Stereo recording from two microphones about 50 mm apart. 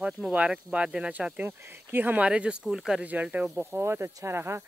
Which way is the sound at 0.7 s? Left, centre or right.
Centre.